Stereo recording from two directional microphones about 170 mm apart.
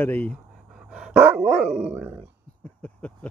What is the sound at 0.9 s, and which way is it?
Dog, 5° right (ahead or behind).